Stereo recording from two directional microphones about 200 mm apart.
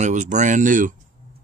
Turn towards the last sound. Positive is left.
turn(degrees=-40)  # may be behind; listen again after turning